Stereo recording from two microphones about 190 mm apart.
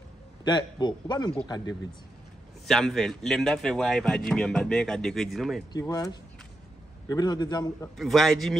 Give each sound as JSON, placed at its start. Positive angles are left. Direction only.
{"t": 0.5, "sound": "a man's voice", "side_deg": 20}
{"t": 2.6, "sound": "speech", "side_deg": 0}
{"t": 5.7, "sound": "a man's voice", "side_deg": 20}
{"t": 8.0, "sound": "speech", "side_deg": 0}